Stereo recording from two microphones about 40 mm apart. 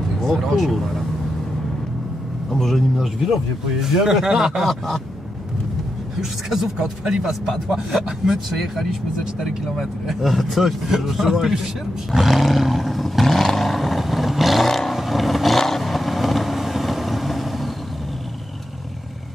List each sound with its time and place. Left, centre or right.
0.2 s a sound: centre
0.5 s speech: centre
2.5 s speech: centre
3.8 s speech: centre
4.6 s speech: centre
6.5 s speech: centre
9.2 s speech: centre
9.8 s speech: centre
13.4 s vehicle: centre